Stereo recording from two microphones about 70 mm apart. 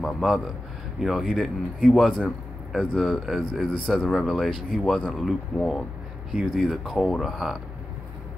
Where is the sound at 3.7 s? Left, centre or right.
Centre.